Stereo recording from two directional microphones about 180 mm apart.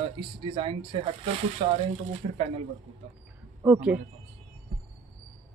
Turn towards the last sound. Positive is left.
turn(degrees=-10)  # may be behind; listen again after turning